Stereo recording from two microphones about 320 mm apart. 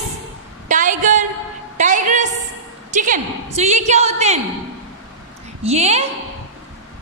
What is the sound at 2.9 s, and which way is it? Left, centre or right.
A woman's voice, right.